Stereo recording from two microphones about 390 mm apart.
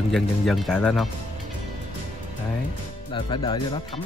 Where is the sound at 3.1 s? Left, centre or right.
Centre.